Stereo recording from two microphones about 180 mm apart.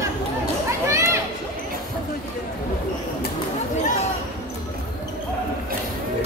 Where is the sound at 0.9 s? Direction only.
15° right (ahead or behind).